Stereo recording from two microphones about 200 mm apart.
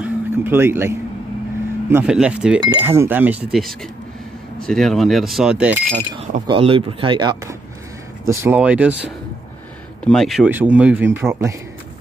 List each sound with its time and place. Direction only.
0.0 s speech: 10° right (ahead or behind)
5.9 s speech: 35° right (ahead or behind); by 11.5 s 10° right (ahead or behind)